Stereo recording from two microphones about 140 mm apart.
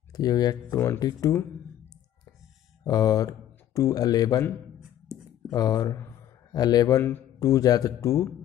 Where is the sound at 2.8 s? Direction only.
25° left (ahead or behind).